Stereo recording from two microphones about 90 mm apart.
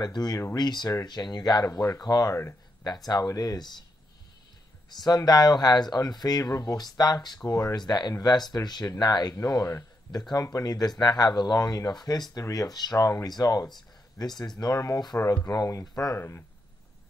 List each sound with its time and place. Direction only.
0.0 s speech: 50° left (ahead or behind)
5.0 s speech: 50° left (ahead or behind)
16.2 s speech: 25° left (ahead or behind)